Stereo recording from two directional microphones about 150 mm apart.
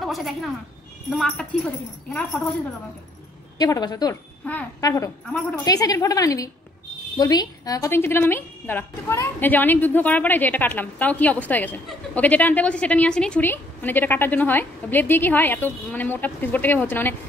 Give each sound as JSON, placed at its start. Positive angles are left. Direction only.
{"t": 0.0, "sound": "a woman's voice", "side_deg": 0}
{"t": 3.5, "sound": "a woman's voice", "side_deg": 25}